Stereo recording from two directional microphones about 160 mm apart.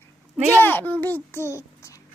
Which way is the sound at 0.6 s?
10° left (ahead or behind).